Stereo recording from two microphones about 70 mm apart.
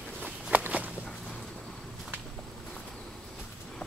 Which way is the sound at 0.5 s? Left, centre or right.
Right.